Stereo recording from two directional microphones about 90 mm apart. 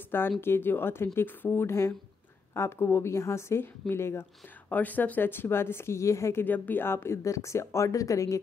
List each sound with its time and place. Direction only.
0.4 s speech: 25° left (ahead or behind)
6.4 s speech: 20° left (ahead or behind); by 8.4 s 35° left (ahead or behind)